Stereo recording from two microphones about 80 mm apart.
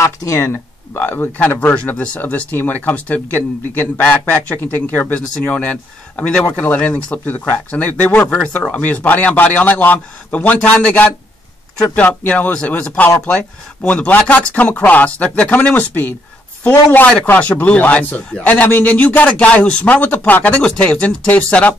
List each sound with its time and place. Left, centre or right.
0.0 s a man's voice: left; by 21.7 s centre